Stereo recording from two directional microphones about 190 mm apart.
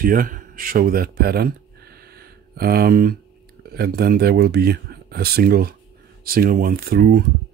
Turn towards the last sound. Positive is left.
turn(degrees=-50)  # may be behind; listen again after turning